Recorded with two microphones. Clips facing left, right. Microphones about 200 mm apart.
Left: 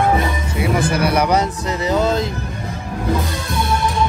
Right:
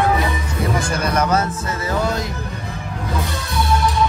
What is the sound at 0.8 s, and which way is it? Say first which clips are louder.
Music: left 4 dB; 60° left (ahead or behind).